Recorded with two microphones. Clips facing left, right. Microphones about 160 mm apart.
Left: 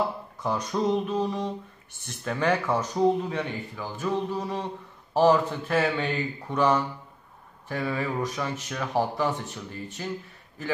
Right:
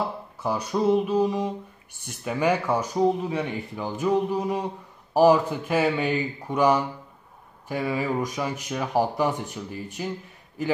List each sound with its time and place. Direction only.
0.4 s speech: 5° right (ahead or behind)